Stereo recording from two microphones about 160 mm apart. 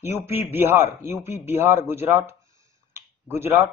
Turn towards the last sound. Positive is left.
turn(degrees=-15)  # may be behind; listen again after turning